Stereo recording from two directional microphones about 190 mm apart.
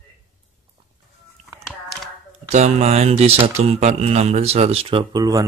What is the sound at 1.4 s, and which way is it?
Chicken, 35° right (ahead or behind).